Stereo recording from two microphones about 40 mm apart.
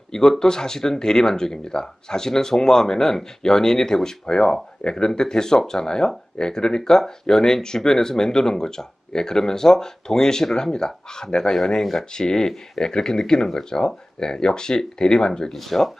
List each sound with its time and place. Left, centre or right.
0.1 s speech: centre
15.5 s speech: centre